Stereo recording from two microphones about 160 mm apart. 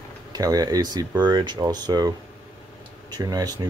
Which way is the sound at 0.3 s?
25° right (ahead or behind).